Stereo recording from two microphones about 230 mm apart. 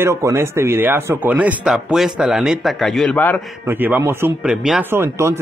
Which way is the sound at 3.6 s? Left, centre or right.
Centre.